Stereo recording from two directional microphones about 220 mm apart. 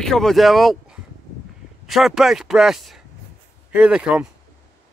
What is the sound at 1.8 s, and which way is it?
Speech, centre (ahead or behind).